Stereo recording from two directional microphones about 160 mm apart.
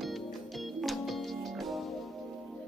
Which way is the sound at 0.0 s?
Centre (ahead or behind).